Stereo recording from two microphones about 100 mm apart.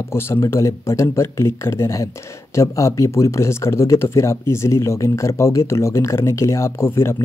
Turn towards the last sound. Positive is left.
turn(degrees=25)  # may be behind; listen again after turning